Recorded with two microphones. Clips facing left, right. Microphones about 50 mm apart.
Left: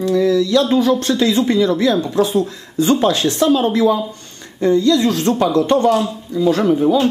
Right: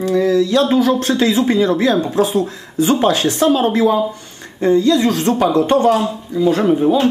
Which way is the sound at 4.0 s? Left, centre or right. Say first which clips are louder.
Right 6 dB; centre.